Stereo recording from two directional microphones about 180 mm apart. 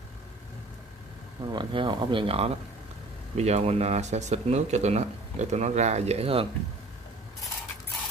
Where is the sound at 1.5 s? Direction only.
25° right (ahead or behind).